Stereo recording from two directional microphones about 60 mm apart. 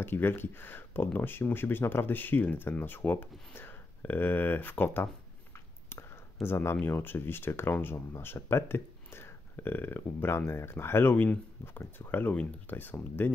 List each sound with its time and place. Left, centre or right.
0.0 s speech: left
6.4 s speech: left